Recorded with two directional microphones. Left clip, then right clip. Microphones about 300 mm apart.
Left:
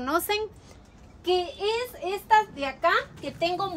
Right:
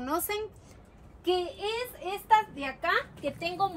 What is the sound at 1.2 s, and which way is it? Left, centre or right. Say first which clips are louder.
A woman's voice: left 4 dB; centre.